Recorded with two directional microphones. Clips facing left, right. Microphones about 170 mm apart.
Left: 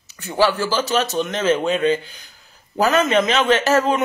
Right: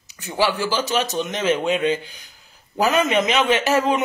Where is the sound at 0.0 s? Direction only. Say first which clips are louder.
Left 3 dB; 15° right (ahead or behind).